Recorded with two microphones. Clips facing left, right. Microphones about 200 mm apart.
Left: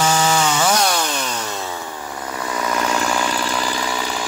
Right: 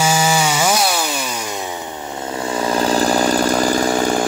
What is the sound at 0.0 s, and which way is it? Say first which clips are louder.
Chainsaw: right 1 dB; 10° right (ahead or behind).